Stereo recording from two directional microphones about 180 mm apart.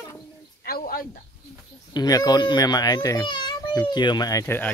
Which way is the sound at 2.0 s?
20° left (ahead or behind).